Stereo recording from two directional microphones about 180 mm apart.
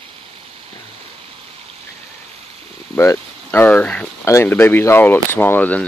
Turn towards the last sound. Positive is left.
turn(degrees=10)  # may be behind; listen again after turning